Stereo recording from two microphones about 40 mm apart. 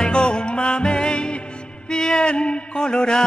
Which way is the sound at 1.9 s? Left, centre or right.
Centre.